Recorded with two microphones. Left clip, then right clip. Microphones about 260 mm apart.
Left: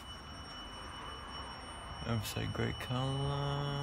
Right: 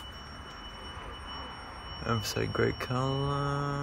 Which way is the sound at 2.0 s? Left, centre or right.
Centre.